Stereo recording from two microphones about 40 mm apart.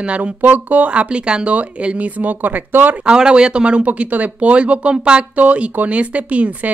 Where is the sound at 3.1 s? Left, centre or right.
Right.